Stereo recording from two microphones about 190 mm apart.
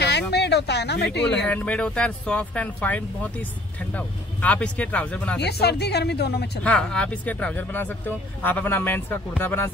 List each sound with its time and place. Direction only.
0.3 s speech: 60° left (ahead or behind)
1.2 s speech: 5° left (ahead or behind)
5.4 s speech: 60° left (ahead or behind)
6.6 s speech: 5° left (ahead or behind)